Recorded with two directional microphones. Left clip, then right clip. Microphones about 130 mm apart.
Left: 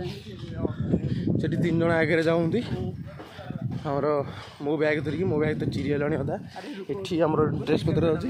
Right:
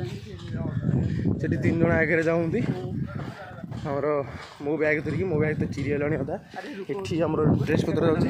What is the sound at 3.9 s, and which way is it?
Speech, 20° left (ahead or behind).